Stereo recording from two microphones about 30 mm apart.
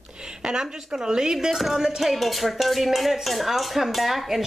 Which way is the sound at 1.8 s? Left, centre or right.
Centre.